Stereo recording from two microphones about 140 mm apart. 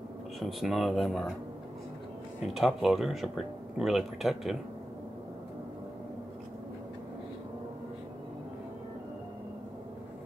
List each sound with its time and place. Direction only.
0.4 s speech: centre (ahead or behind)
2.4 s speech: centre (ahead or behind)